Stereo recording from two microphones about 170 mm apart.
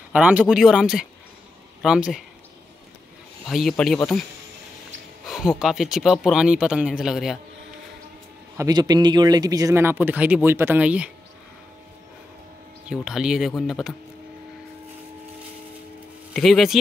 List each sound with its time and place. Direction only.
0.1 s speech: 10° right (ahead or behind)
3.4 s speech: centre (ahead or behind)
5.2 s speech: centre (ahead or behind)
8.5 s speech: 25° right (ahead or behind); by 11.1 s 5° right (ahead or behind)
12.8 s speech: 5° right (ahead or behind)
16.3 s speech: centre (ahead or behind)